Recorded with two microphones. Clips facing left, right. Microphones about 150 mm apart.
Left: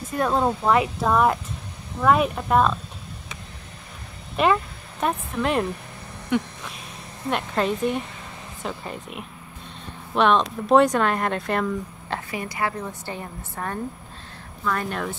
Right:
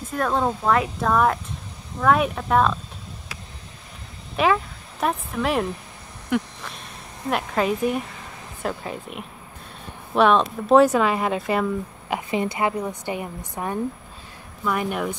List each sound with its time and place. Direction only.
0.1 s speech: 5° left (ahead or behind)
4.4 s speech: centre (ahead or behind)
12.3 s a woman's voice: 25° right (ahead or behind)